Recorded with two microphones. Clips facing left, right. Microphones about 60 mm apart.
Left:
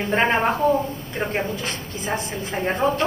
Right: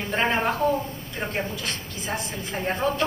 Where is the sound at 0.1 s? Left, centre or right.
Left.